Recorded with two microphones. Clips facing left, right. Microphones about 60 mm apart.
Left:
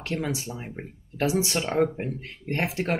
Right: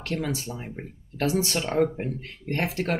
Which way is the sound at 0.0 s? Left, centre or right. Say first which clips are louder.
Even; centre.